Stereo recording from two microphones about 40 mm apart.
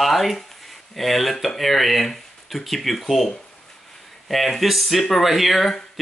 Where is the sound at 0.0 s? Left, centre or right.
Centre.